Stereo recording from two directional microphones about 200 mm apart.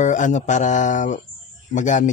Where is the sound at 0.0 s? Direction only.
40° left (ahead or behind).